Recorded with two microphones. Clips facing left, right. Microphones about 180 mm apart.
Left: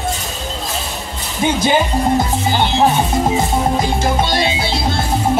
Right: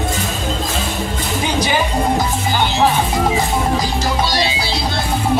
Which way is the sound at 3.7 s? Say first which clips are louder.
Left 2 dB; 25° left (ahead or behind).